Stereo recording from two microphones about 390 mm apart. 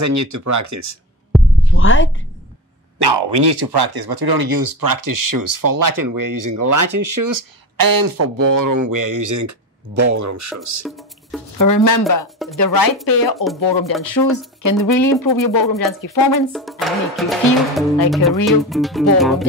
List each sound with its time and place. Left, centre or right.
0.0 s speech: right
1.3 s heart murmur: centre
1.7 s a woman's voice: left
3.0 s speech: right
11.5 s speech: left
14.6 s speech: left
16.5 s speech: centre